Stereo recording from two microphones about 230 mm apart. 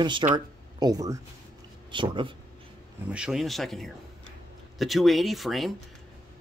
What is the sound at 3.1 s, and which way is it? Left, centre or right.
Speech, centre.